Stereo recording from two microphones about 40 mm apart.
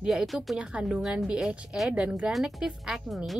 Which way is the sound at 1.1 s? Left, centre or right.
Right.